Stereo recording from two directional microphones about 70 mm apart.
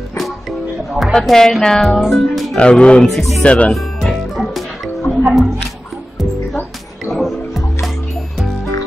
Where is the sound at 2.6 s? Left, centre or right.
Centre.